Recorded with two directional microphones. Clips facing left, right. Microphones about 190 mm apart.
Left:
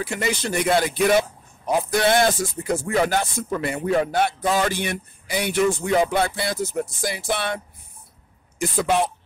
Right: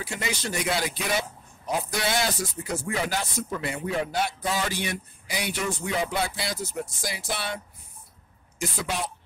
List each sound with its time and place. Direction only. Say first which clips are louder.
0.0 s speech: left 6 dB; 55° left (ahead or behind)